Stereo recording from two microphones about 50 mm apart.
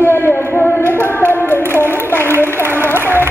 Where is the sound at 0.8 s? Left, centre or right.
Left.